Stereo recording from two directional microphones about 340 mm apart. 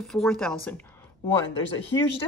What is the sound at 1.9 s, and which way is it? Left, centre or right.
Speech, centre.